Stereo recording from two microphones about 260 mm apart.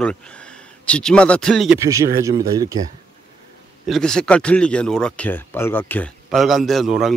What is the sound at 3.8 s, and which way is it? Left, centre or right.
Speech, centre.